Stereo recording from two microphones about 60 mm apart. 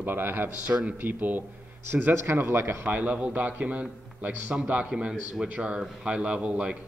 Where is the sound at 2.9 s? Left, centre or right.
Right.